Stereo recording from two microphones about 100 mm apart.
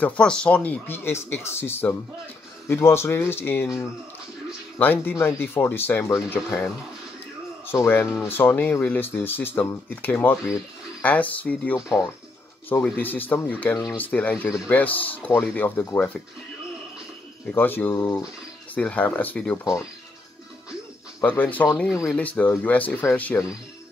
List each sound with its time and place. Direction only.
0.0 s speech: 10° left (ahead or behind)
4.7 s speech: 20° left (ahead or behind)
12.8 s speech: 15° left (ahead or behind)
17.6 s speech: 20° left (ahead or behind)
21.2 s speech: 15° left (ahead or behind)